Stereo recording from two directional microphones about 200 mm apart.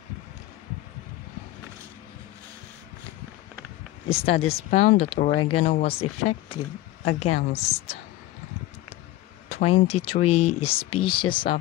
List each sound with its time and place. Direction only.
4.1 s a woman's voice: 30° left (ahead or behind)
9.5 s speech: 30° left (ahead or behind)